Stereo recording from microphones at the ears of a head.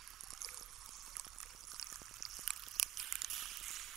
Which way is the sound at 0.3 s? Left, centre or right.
Right.